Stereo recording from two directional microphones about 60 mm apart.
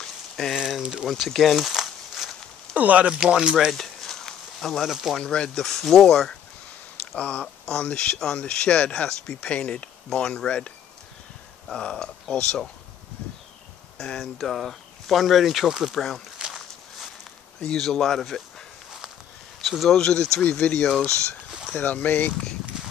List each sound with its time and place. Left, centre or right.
0.0 s a sound: centre
0.7 s speech: centre
2.7 s speech: right
3.1 s speech: centre
3.7 s a sound: centre
5.1 s speech: centre
7.2 s speech: left
11.7 s speech: centre
13.9 s speech: centre
17.6 s speech: centre
19.6 s speech: centre
21.7 s speech: left